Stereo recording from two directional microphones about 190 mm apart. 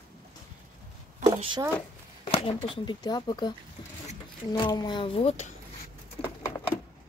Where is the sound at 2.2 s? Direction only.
30° left (ahead or behind).